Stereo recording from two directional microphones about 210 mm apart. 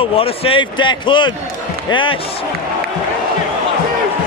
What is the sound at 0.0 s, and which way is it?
Speech, 25° left (ahead or behind).